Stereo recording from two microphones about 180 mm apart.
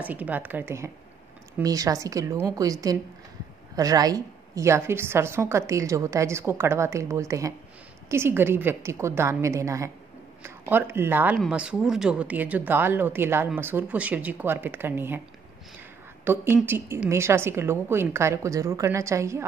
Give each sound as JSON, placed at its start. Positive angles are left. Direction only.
{"t": 0.0, "sound": "a woman's voice", "side_deg": -10}
{"t": 16.3, "sound": "a woman's voice", "side_deg": -10}